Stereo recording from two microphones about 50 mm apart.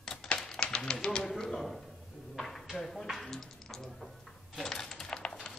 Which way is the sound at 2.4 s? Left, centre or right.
Centre.